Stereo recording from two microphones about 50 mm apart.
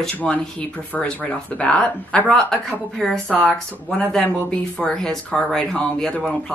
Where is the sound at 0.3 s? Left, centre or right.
Left; by 3.1 s centre.